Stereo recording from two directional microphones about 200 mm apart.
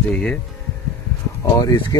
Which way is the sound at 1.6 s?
20° left (ahead or behind).